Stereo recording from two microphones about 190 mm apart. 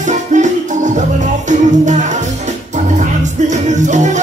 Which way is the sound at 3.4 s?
40° right (ahead or behind).